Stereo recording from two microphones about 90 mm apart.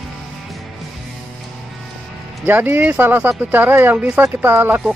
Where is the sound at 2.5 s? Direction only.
20° right (ahead or behind).